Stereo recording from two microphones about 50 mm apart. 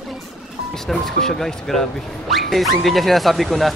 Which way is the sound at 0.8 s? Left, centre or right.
Centre.